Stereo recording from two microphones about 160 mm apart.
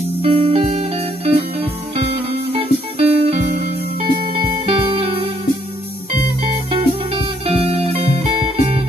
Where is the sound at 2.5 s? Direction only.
40° right (ahead or behind).